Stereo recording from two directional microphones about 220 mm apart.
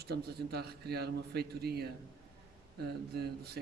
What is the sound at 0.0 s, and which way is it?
Speech, 45° right (ahead or behind).